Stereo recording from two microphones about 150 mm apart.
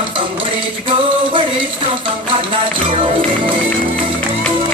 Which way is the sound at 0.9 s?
35° right (ahead or behind).